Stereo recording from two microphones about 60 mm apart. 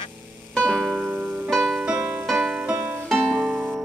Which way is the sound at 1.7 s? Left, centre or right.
Centre.